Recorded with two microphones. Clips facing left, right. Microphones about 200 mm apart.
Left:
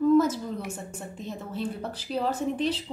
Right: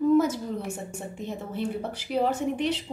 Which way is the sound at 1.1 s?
60° right (ahead or behind).